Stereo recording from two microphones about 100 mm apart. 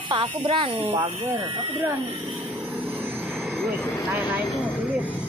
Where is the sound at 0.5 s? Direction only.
80° right.